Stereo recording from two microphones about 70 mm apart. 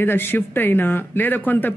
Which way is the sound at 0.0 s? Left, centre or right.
Left.